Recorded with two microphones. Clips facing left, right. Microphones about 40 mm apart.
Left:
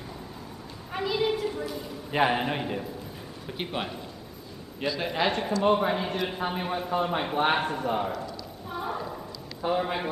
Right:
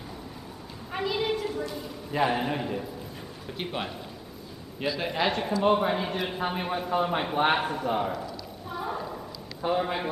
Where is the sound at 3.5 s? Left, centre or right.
Centre.